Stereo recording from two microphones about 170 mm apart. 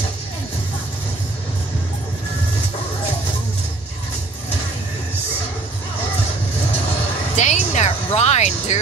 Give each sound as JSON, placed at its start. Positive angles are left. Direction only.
{"t": 7.3, "sound": "music", "side_deg": 40}